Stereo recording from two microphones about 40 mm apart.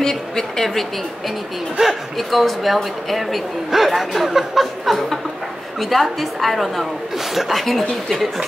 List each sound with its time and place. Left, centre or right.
0.0 s a woman's voice: centre
1.8 s speech: right
2.1 s a woman's voice: centre